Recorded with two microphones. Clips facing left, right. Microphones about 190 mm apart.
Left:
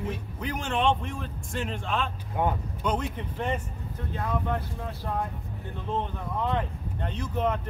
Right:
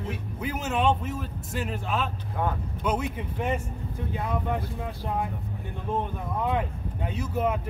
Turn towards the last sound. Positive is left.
turn(degrees=-10)  # may be behind; listen again after turning